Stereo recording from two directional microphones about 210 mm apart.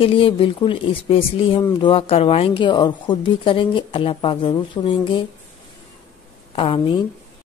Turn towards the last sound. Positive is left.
turn(degrees=25)  # may be behind; listen again after turning